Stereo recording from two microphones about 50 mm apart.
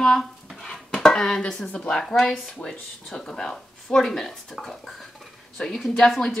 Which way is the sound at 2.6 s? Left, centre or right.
Left.